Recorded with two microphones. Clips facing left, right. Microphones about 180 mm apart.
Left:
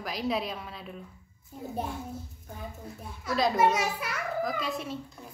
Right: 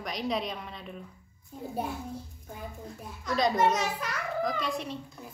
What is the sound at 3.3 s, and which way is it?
A child's voice, 5° left (ahead or behind).